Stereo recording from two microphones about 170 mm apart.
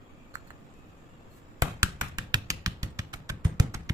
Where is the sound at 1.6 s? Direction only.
20° right (ahead or behind).